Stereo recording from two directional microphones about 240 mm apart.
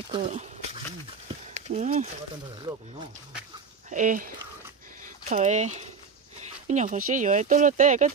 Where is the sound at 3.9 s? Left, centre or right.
Right.